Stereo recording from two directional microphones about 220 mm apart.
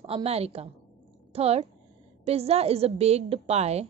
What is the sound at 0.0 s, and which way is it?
A woman's voice, 25° right (ahead or behind).